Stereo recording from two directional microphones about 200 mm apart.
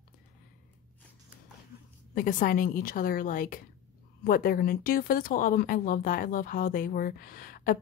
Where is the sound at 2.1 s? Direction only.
45° left (ahead or behind).